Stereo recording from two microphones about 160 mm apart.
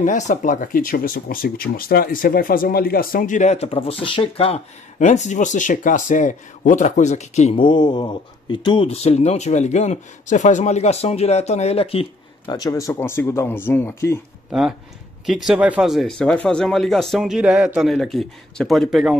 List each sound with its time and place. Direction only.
0.0 s speech: 50° left (ahead or behind)
7.5 s speech: 30° left (ahead or behind)
12.5 s speech: 20° left (ahead or behind)
15.2 s speech: centre (ahead or behind)